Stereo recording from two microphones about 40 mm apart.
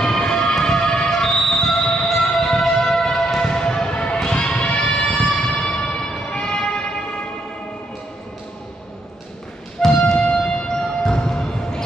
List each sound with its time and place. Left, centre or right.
0.0 s music: centre
9.8 s music: centre